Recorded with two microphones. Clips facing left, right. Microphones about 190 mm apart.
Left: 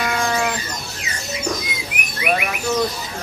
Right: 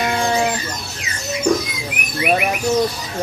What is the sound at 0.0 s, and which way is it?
Chicken, 30° right (ahead or behind).